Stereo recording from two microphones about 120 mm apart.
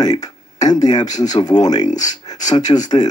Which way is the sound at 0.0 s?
35° left (ahead or behind).